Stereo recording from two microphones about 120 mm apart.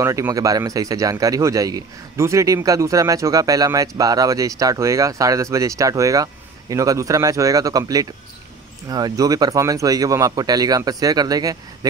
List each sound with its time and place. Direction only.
0.0 s speech: 25° right (ahead or behind)